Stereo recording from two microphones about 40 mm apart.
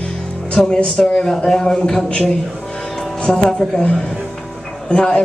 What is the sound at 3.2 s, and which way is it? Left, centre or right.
Speech, left.